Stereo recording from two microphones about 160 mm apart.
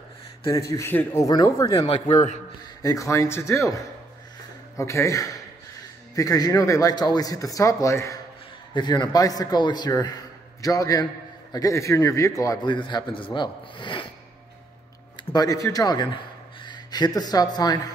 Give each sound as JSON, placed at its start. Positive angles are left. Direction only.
{"t": 0.5, "sound": "a man's voice", "side_deg": 20}
{"t": 1.9, "sound": "a man's voice", "side_deg": 35}
{"t": 2.1, "sound": "a man's voice", "side_deg": 50}
{"t": 2.8, "sound": "a man's voice", "side_deg": 20}
{"t": 15.3, "sound": "a man's voice", "side_deg": 25}